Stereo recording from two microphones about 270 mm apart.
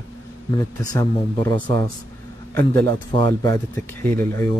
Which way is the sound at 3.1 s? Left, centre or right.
Centre.